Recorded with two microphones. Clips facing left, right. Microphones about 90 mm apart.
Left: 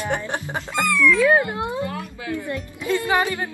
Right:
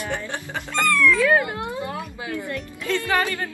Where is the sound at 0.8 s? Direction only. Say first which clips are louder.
Left 1 dB; centre (ahead or behind).